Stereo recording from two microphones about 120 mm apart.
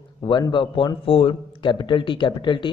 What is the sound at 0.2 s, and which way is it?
A man's voice, 40° left (ahead or behind).